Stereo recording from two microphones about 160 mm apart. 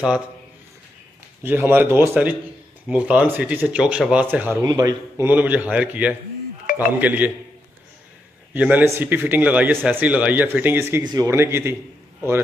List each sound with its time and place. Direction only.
1.4 s speech: 15° right (ahead or behind)
4.6 s speech: 25° right (ahead or behind)
8.5 s speech: 10° right (ahead or behind)